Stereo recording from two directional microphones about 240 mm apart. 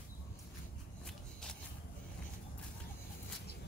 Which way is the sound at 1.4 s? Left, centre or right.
Centre.